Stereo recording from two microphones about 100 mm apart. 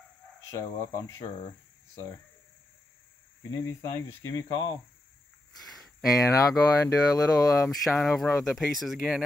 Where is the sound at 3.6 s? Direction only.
30° left (ahead or behind).